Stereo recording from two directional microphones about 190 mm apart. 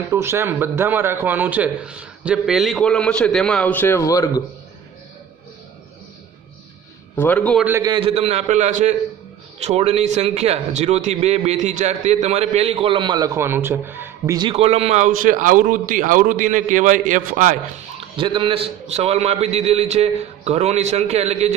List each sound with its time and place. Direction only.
0.1 s a man's voice: 15° right (ahead or behind); by 4.4 s 15° left (ahead or behind)
7.2 s a man's voice: 10° left (ahead or behind)
7.6 s a man's voice: 10° right (ahead or behind)
7.9 s a man's voice: 30° right (ahead or behind)
18.1 s a man's voice: 25° right (ahead or behind)